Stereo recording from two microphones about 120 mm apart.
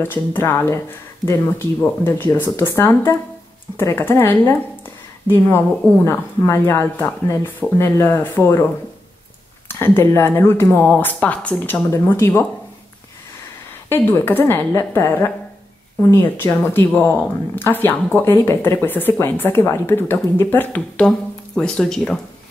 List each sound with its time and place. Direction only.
0.0 s speech: 20° left (ahead or behind)
6.0 s speech: 25° left (ahead or behind)
9.7 s speech: 20° left (ahead or behind)
13.8 s speech: 20° left (ahead or behind)